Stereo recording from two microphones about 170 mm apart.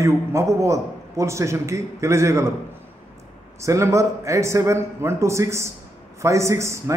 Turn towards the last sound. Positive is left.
turn(degrees=-15)  # may be behind; listen again after turning